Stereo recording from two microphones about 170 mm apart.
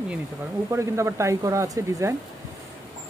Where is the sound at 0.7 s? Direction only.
15° right (ahead or behind).